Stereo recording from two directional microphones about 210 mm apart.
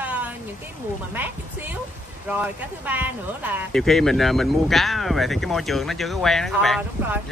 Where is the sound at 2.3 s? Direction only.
10° right (ahead or behind).